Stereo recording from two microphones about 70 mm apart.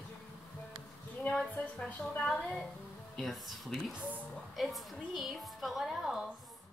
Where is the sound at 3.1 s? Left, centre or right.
Centre.